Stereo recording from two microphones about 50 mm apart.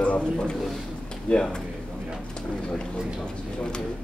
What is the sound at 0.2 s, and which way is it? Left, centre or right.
A man's voice, centre.